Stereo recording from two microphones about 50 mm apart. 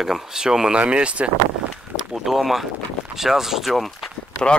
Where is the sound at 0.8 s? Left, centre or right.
Right.